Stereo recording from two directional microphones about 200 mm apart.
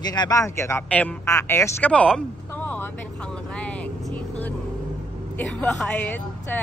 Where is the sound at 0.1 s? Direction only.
20° left (ahead or behind).